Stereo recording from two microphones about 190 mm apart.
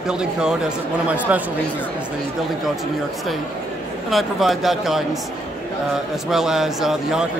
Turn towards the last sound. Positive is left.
turn(degrees=0)  # may be behind; listen again after turning